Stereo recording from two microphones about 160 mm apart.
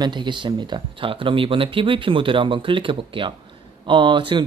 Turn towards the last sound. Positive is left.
turn(degrees=-30)  # may be behind; listen again after turning